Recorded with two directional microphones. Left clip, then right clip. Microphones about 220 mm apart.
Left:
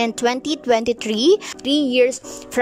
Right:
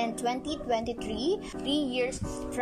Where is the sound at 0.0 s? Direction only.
45° left (ahead or behind).